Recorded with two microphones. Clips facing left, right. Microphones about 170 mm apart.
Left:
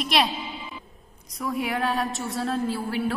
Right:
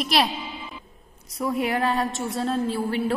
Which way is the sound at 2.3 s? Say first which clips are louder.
Right 2 dB; 25° right (ahead or behind).